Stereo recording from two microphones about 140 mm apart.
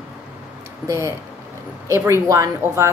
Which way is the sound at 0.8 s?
20° right (ahead or behind).